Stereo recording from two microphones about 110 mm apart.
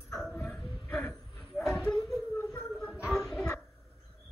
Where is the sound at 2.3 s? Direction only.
20° left (ahead or behind).